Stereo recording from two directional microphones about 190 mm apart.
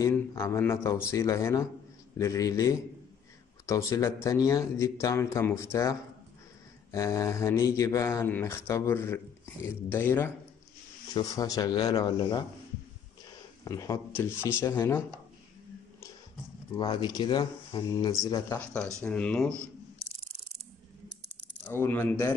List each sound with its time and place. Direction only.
0.0 s speech: 15° left (ahead or behind)
13.7 s speech: 15° left (ahead or behind)
16.7 s speech: 25° left (ahead or behind)
18.6 s speech: 5° left (ahead or behind)
21.6 s speech: 10° left (ahead or behind)